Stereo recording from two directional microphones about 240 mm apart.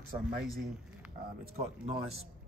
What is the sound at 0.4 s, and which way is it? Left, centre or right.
Speech, centre.